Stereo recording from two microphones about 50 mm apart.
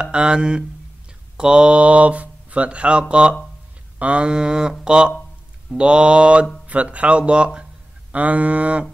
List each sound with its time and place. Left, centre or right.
0.0 s speech: centre
4.0 s a sound: right
5.7 s speech: centre